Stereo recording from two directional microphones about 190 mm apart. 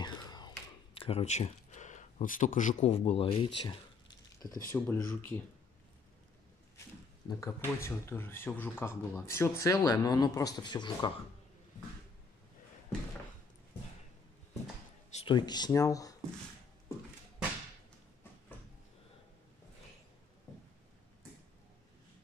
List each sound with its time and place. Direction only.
0.0 s a sound: 20° left (ahead or behind)
3.3 s speech: 25° left (ahead or behind)
4.6 s speech: 10° left (ahead or behind)
7.2 s speech: 15° left (ahead or behind)
15.0 s speech: 30° left (ahead or behind)